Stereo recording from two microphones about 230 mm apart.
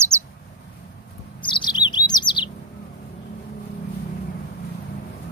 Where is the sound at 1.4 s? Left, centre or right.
Centre.